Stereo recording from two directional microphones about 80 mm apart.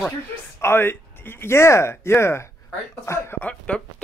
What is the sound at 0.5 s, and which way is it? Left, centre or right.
Speech, left.